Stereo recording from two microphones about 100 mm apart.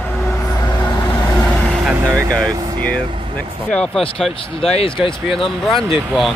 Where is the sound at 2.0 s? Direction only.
30° right (ahead or behind).